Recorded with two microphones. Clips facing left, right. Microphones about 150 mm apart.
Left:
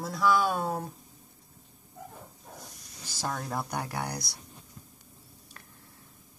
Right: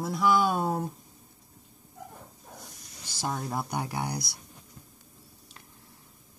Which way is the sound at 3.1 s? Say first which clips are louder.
Right 1 dB; 15° right (ahead or behind).